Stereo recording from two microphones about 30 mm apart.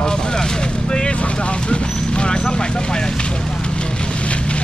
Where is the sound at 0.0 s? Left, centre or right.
Left.